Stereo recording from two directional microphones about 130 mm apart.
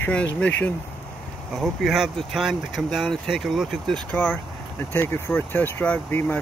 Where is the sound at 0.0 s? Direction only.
10° left (ahead or behind).